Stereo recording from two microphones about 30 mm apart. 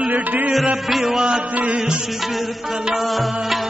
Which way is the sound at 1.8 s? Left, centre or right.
Right.